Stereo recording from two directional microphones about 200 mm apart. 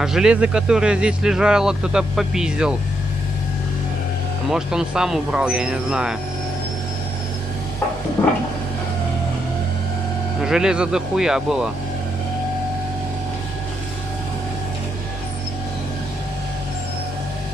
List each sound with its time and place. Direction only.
0.0 s speech: 5° right (ahead or behind)
4.5 s speech: 5° right (ahead or behind)
8.2 s a sound: 25° left (ahead or behind)
10.4 s speech: 5° right (ahead or behind)